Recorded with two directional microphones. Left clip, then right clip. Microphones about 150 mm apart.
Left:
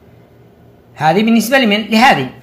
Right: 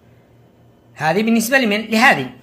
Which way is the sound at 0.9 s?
25° right (ahead or behind).